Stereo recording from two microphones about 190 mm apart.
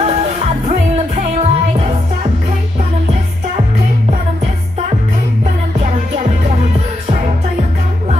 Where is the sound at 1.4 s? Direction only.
30° right (ahead or behind).